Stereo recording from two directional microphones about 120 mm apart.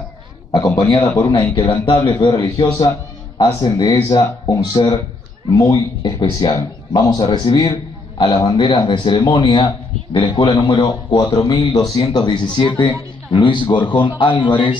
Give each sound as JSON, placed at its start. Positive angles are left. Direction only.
{"t": 0.5, "sound": "a man's voice", "side_deg": 30}
{"t": 3.6, "sound": "a man's voice", "side_deg": 30}